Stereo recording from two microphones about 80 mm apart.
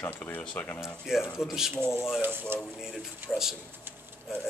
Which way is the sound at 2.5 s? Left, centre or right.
Right.